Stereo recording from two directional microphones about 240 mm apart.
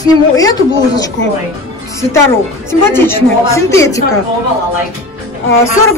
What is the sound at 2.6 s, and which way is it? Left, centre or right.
Speech, centre.